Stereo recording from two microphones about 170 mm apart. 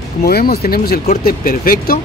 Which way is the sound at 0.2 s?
65° left (ahead or behind).